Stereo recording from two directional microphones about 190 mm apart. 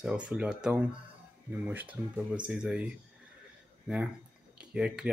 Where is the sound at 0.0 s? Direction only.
5° right (ahead or behind).